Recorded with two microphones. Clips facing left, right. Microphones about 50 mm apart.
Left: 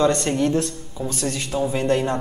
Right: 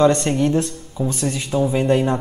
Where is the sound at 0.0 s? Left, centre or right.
Right.